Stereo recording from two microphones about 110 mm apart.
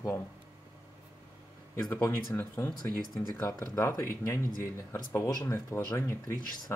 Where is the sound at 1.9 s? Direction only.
20° left (ahead or behind).